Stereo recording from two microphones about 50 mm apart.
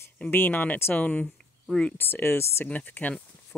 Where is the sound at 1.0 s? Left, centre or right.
Left.